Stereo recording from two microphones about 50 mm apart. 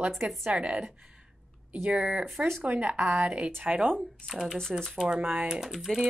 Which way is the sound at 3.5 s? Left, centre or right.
Right.